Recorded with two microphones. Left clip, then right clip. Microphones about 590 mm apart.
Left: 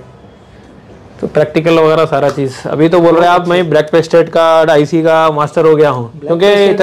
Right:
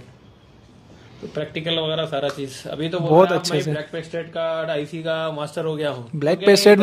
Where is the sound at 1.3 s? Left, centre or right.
Centre.